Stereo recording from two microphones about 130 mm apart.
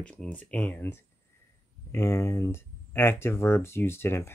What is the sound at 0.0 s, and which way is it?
Speech, 10° left (ahead or behind).